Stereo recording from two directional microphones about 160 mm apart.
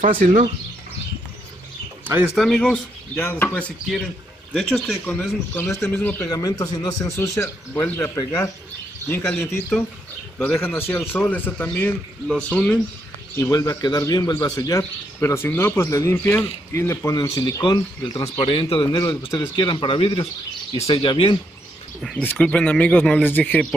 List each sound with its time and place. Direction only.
0.2 s speech: 55° right (ahead or behind)
2.3 s a man's voice: centre (ahead or behind)
6.3 s speech: 25° left (ahead or behind)
9.0 s a man's voice: 10° left (ahead or behind)
13.4 s a man's voice: 20° left (ahead or behind)
22.0 s a man's voice: 10° left (ahead or behind)